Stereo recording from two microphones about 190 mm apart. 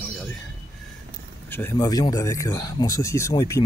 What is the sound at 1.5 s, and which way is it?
Speech, 10° left (ahead or behind).